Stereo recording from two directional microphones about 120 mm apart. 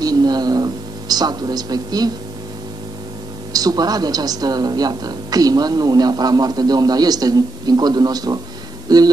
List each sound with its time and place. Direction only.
0.0 s a woman's voice: 35° right (ahead or behind)
3.5 s a woman's voice: 30° right (ahead or behind)